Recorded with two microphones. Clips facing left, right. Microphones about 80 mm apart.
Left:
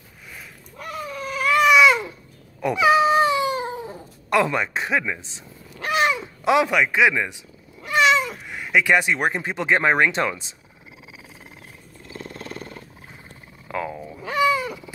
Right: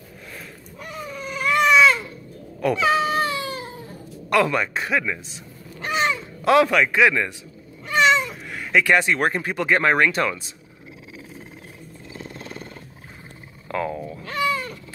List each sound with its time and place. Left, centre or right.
0.7 s baby cry: centre
2.6 s cat: centre
5.8 s cat: centre
6.4 s a man's voice: centre
7.8 s cat: centre
8.5 s speech: centre
12.1 s wild animals: centre
13.7 s a sound: centre